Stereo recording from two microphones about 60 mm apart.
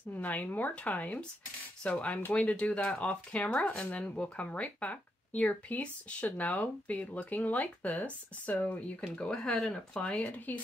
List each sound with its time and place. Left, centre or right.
0.1 s speech: left
9.1 s speech: centre